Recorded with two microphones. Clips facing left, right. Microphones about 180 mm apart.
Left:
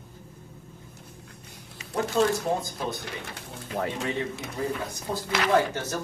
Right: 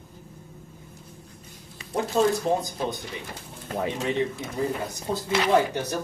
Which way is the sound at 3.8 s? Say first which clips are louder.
Right 2 dB; 20° right (ahead or behind).